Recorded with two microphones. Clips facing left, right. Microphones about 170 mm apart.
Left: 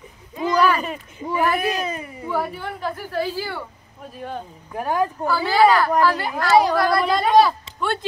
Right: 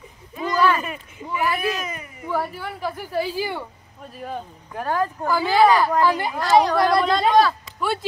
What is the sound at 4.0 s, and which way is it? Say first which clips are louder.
Speech: even; centre (ahead or behind).